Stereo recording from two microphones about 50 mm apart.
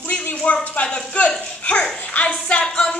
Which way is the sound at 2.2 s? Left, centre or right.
Left.